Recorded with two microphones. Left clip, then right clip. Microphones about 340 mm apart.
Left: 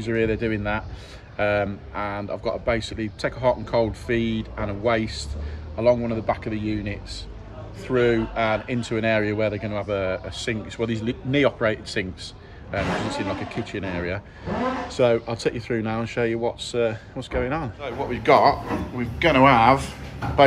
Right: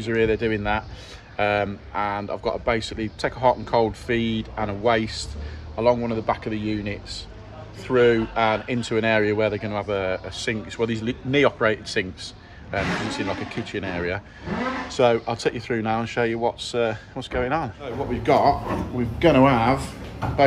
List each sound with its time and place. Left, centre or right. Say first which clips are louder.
0.0 s speech: right 2 dB; centre